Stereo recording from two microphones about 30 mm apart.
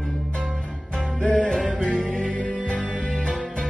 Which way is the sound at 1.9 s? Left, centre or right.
Left.